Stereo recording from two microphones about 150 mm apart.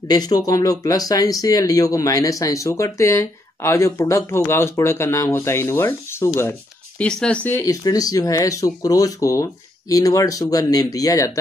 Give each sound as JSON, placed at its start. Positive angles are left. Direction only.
{"t": 0.1, "sound": "speech", "side_deg": 25}
{"t": 7.0, "sound": "speech", "side_deg": 5}